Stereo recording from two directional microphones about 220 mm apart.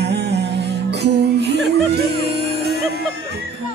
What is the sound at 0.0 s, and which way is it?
Music, 50° right (ahead or behind).